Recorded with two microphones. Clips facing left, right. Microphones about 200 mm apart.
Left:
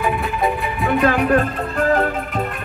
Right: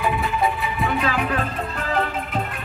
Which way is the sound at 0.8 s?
50° left (ahead or behind).